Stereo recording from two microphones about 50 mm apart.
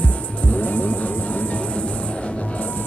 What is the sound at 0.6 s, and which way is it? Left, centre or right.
Music, left.